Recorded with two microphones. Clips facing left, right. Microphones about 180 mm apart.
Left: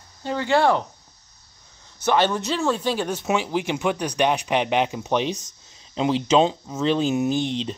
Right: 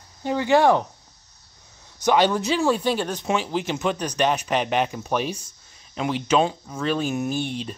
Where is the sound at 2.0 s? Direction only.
15° right (ahead or behind).